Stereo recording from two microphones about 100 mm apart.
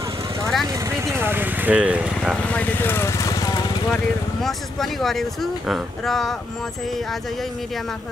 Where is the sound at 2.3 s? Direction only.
15° left (ahead or behind); by 3.6 s 35° left (ahead or behind).